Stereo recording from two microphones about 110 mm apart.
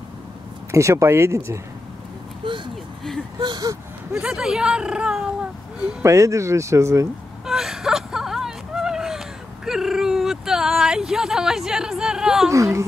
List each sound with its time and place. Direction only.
0.7 s speech: 25° right (ahead or behind)
2.4 s vehicle: 45° right (ahead or behind)
3.3 s speech: 40° right (ahead or behind)
4.1 s speech: 5° right (ahead or behind)
6.0 s speech: 30° right (ahead or behind)
7.4 s whimper: 5° right (ahead or behind)
9.7 s a sound: 5° right (ahead or behind)
12.4 s speech: 30° right (ahead or behind)